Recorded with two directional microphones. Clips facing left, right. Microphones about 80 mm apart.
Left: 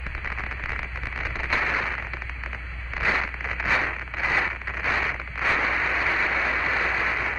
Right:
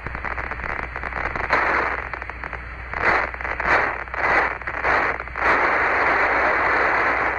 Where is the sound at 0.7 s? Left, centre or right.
Right.